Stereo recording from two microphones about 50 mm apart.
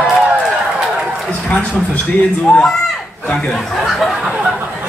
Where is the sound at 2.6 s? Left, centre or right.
Centre.